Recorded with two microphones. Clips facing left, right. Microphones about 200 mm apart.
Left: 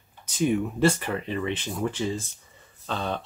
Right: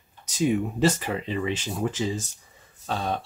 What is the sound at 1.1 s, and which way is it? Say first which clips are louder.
Speech: even; 30° right (ahead or behind).